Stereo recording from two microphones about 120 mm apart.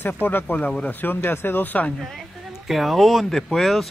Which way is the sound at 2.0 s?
Centre (ahead or behind).